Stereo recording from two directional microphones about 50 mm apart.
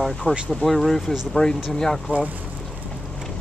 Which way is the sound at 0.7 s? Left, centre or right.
Centre.